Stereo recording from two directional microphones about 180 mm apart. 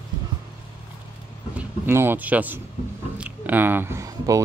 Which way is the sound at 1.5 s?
10° right (ahead or behind).